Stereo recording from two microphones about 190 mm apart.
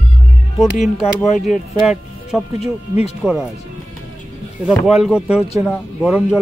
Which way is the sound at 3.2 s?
5° right (ahead or behind).